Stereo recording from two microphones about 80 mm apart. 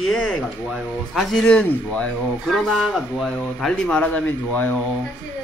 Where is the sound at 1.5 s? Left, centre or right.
Centre.